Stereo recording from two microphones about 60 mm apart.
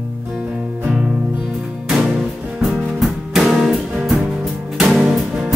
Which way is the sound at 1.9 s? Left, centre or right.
Centre.